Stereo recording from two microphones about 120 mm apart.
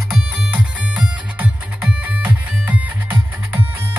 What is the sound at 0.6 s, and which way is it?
Music, 10° right (ahead or behind).